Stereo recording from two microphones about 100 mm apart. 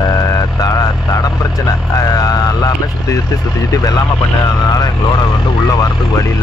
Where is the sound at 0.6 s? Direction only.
35° left (ahead or behind).